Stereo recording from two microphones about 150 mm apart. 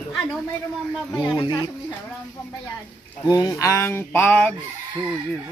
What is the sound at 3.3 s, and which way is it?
Speech, 20° left (ahead or behind).